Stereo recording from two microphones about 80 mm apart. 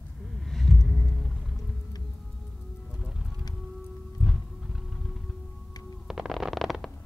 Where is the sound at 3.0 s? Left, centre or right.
Centre.